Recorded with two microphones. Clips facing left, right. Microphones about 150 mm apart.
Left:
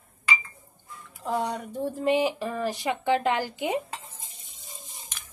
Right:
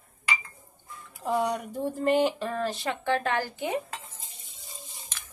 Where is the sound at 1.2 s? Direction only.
5° right (ahead or behind); by 3.8 s 15° left (ahead or behind).